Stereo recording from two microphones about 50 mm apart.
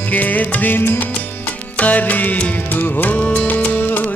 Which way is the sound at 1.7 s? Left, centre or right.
Left.